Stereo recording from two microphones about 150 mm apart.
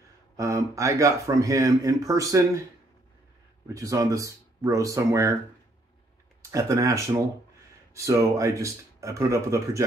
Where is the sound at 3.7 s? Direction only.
20° right (ahead or behind).